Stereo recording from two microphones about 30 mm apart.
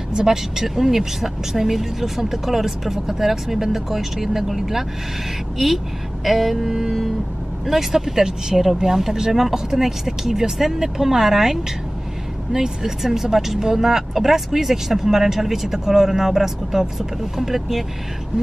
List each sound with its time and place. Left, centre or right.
0.1 s speech: centre
6.2 s a sound: centre
6.5 s speech: centre
12.5 s speech: right
13.0 s speech: centre